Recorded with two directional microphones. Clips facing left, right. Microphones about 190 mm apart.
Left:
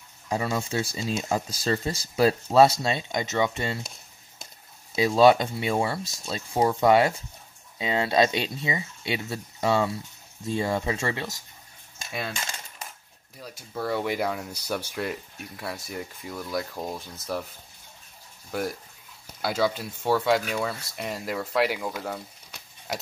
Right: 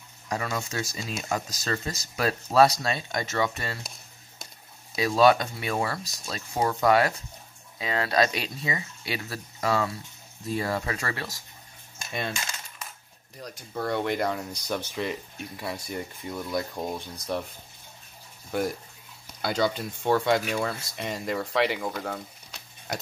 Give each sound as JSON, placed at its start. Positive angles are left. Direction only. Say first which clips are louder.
{"t": 0.3, "sound": "speech", "louder": "left 3 dB", "side_deg": 25}
{"t": 4.9, "sound": "speech", "louder": "left 2 dB", "side_deg": 25}
{"t": 12.1, "sound": "speech", "louder": "right 1 dB", "side_deg": 5}
{"t": 13.4, "sound": "speech", "louder": "even", "side_deg": 5}
{"t": 18.5, "sound": "speech", "louder": "right 2 dB", "side_deg": 0}